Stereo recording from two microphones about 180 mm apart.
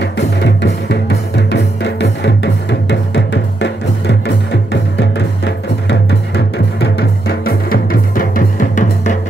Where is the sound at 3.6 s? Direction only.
75° left (ahead or behind).